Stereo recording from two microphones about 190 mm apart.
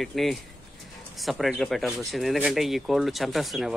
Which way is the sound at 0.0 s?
Centre (ahead or behind).